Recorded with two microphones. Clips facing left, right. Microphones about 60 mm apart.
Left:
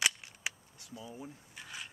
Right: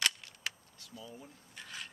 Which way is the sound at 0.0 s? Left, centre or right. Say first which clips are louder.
Left 1 dB; centre.